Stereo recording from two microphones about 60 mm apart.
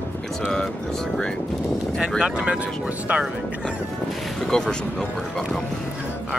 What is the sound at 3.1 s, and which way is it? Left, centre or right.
Speech, right.